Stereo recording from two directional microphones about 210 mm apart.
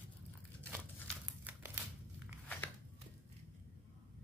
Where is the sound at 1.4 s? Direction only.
10° right (ahead or behind).